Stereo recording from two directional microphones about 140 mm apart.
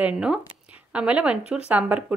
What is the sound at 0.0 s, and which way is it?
A woman's voice, 5° right (ahead or behind).